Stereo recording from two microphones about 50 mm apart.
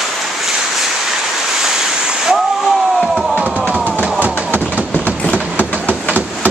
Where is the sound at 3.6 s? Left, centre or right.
Centre.